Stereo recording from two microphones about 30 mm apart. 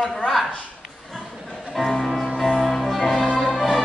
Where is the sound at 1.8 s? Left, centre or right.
Centre.